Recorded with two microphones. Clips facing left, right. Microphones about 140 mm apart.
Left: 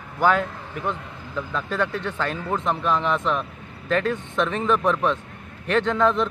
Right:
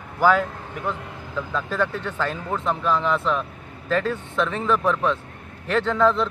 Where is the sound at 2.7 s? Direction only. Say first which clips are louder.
Right 1 dB; 20° left (ahead or behind).